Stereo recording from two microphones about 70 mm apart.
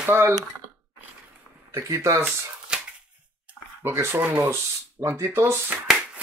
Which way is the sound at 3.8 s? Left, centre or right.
Right.